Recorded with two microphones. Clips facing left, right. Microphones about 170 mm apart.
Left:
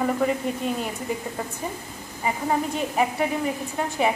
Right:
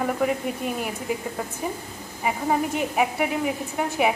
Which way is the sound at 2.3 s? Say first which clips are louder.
Right 1 dB; 5° right (ahead or behind).